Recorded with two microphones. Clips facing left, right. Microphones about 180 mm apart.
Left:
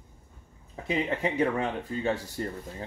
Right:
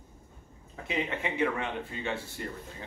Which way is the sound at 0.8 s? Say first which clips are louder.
Left 4 dB; 40° left (ahead or behind).